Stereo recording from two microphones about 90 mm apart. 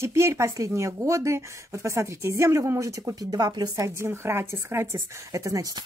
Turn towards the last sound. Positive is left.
turn(degrees=-40)  # may be behind; listen again after turning